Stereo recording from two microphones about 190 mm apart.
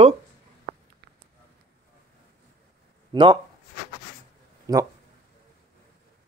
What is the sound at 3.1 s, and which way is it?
Speech, 25° right (ahead or behind).